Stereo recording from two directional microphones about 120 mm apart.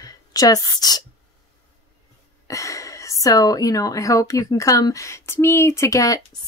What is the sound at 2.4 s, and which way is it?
A woman's voice, 25° left (ahead or behind).